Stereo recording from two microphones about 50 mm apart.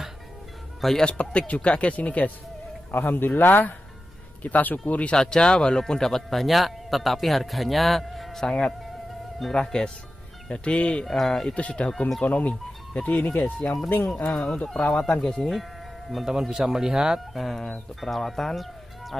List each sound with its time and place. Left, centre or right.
0.7 s speech: centre
1.0 s speech: left
2.9 s a man's voice: left
5.1 s speech: centre
11.1 s speech: centre
11.5 s speech: left
14.3 s speech: centre
16.3 s speech: centre